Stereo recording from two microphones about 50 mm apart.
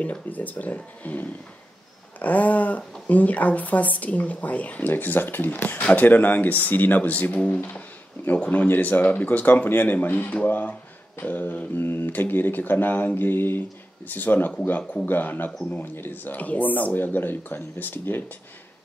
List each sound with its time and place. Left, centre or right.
0.0 s speech: left
11.7 s speech: left